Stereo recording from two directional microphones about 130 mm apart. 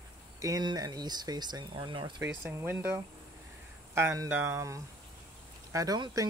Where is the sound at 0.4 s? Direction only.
30° right (ahead or behind).